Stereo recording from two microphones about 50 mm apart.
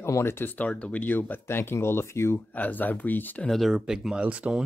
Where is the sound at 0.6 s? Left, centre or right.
Left.